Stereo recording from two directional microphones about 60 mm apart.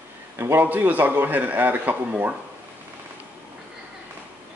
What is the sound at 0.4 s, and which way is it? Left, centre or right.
Speech, right.